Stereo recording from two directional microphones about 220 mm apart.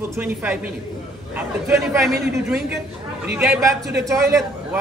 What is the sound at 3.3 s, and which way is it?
Speech, centre (ahead or behind).